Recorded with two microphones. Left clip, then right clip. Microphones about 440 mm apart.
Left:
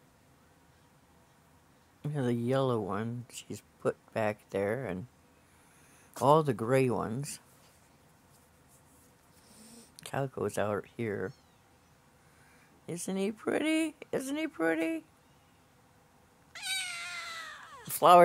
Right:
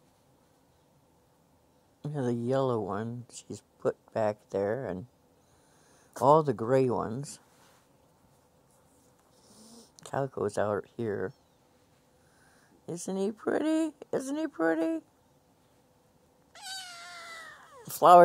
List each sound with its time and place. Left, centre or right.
2.0 s speech: right
6.2 s speech: right
9.5 s speech: right
12.8 s speech: right
16.5 s cat: right